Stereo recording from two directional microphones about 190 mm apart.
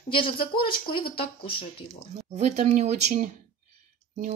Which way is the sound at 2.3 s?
35° right (ahead or behind).